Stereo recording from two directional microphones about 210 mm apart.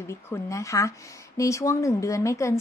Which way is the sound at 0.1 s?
15° left (ahead or behind).